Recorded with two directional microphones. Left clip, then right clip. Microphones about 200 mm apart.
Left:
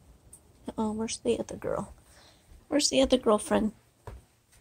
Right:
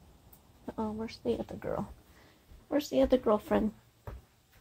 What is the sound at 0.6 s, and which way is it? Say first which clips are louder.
A woman's voice: left 4 dB; 40° left (ahead or behind).